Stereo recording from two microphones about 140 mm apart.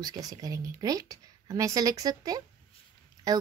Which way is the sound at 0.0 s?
25° right (ahead or behind).